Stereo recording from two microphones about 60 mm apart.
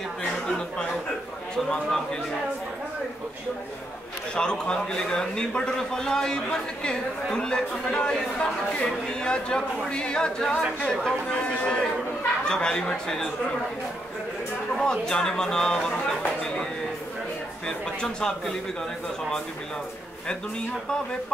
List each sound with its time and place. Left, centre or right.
4.4 s a man's voice: centre
14.8 s a man's voice: centre
16.2 s a sound: centre
17.6 s a man's voice: centre